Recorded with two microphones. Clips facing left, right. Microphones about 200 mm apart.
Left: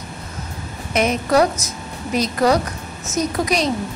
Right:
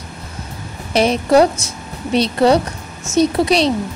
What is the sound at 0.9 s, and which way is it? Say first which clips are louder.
A woman's voice: right 4 dB; 30° right (ahead or behind).